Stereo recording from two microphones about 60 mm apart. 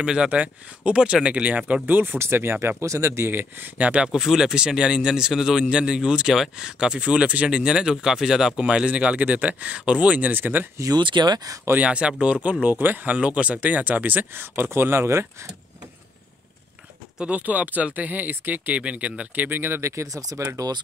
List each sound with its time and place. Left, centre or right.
0.0 s speech: centre; by 2.1 s right
2.1 s speech: right
4.1 s a man's voice: centre; by 10.7 s right
10.8 s speech: right
11.7 s speech: right
12.6 s speech: right
17.2 s speech: right
19.8 s speech: right